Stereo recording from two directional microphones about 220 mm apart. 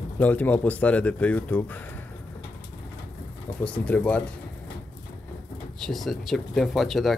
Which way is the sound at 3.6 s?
5° left (ahead or behind).